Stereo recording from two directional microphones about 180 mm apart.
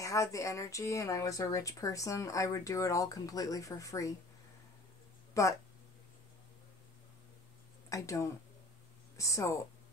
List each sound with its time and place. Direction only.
0.0 s speech: 15° left (ahead or behind)
5.3 s speech: 15° left (ahead or behind)
7.9 s speech: 15° left (ahead or behind)